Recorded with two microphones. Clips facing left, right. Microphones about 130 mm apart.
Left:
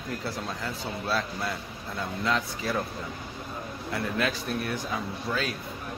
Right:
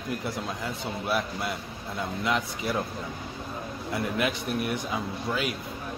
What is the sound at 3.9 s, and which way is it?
A man's voice, 20° right (ahead or behind).